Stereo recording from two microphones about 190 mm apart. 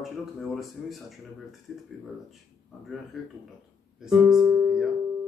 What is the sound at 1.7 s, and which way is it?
Speech, centre (ahead or behind).